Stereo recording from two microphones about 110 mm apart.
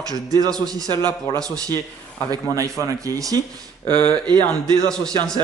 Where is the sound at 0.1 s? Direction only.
35° right (ahead or behind).